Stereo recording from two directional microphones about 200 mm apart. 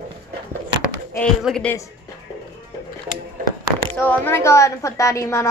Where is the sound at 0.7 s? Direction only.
60° right (ahead or behind).